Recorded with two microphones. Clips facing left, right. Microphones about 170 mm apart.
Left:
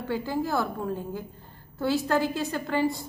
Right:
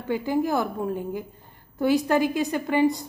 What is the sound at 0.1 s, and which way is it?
A woman's voice, 15° right (ahead or behind).